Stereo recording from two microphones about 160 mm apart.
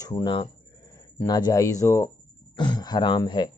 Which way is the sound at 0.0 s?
25° left (ahead or behind).